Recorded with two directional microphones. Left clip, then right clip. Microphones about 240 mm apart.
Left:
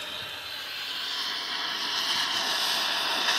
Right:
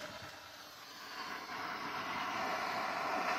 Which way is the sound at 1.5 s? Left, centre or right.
Centre.